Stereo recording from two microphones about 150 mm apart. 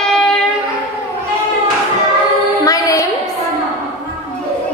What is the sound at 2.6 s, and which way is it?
Music, 25° left (ahead or behind).